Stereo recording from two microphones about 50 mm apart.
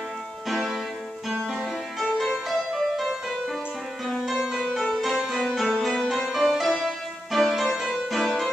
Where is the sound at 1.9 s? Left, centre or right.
Centre.